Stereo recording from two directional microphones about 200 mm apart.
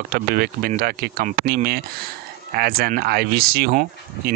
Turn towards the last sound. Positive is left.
turn(degrees=-45)  # may be behind; listen again after turning